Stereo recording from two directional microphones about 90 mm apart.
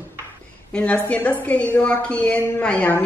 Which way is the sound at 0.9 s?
20° left (ahead or behind).